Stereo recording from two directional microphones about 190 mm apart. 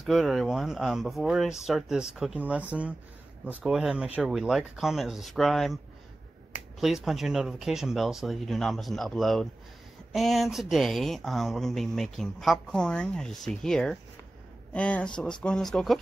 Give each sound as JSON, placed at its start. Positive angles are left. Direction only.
{"t": 0.0, "sound": "speech", "side_deg": 0}
{"t": 6.8, "sound": "speech", "side_deg": 0}